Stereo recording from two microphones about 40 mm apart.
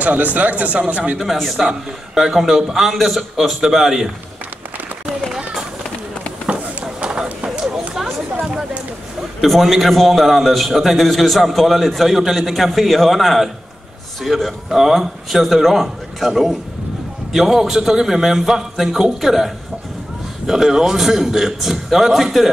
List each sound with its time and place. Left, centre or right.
0.0 s speech: right
1.2 s a man's voice: centre
6.8 s run: right
9.4 s a man's voice: centre